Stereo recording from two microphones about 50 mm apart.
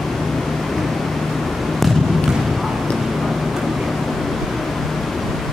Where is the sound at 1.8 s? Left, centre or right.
Centre.